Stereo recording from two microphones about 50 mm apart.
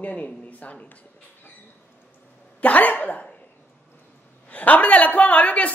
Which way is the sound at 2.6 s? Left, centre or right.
Left.